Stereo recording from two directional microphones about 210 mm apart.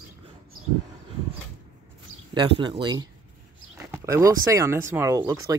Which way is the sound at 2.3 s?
20° right (ahead or behind).